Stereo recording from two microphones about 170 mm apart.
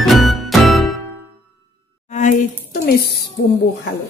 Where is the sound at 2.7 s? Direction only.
65° left (ahead or behind).